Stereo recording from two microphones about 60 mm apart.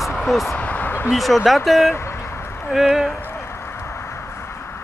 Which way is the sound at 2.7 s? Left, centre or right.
Centre.